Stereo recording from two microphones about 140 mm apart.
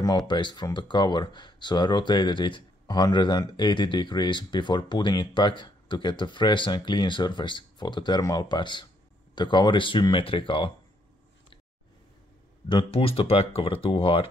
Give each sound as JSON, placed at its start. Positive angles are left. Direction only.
{"t": 0.3, "sound": "speech", "side_deg": 35}
{"t": 12.6, "sound": "speech", "side_deg": 40}